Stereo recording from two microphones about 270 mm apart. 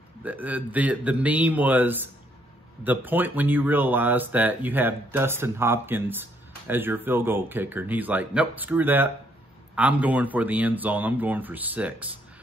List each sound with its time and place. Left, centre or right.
0.2 s a man's voice: centre